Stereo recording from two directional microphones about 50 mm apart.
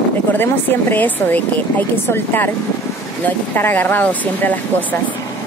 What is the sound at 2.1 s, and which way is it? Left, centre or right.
Speech, left.